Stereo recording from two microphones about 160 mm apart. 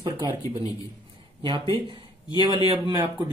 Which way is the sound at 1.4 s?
30° right (ahead or behind).